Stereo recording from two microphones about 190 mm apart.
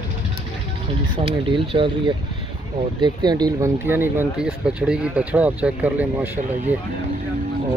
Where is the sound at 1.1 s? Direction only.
25° right (ahead or behind); by 6.7 s 10° right (ahead or behind).